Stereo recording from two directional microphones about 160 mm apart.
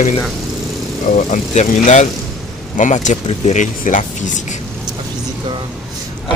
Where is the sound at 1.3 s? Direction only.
45° left (ahead or behind).